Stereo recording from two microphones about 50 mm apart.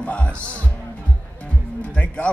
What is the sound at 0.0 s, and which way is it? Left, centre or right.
Music, left.